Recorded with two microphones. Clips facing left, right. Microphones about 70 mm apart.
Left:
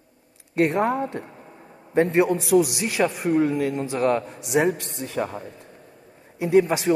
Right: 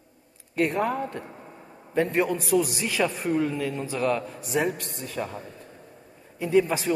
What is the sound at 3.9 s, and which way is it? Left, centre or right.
Speech, left.